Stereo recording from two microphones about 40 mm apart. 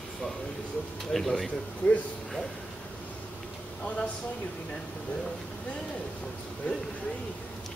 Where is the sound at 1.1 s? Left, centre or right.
Centre.